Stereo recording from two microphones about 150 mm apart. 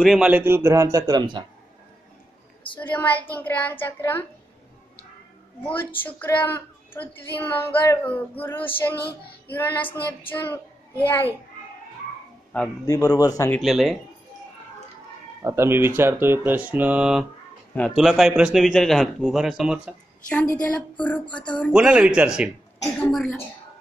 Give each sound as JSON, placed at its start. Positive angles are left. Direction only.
{"t": 0.0, "sound": "a man's voice", "side_deg": -5}
{"t": 2.8, "sound": "speech", "side_deg": 10}
{"t": 6.0, "sound": "speech", "side_deg": 10}
{"t": 12.8, "sound": "a man's voice", "side_deg": 20}
{"t": 13.6, "sound": "a man's voice", "side_deg": 0}
{"t": 15.4, "sound": "a man's voice", "side_deg": -15}
{"t": 20.2, "sound": "speech", "side_deg": 10}
{"t": 21.7, "sound": "a man's voice", "side_deg": -5}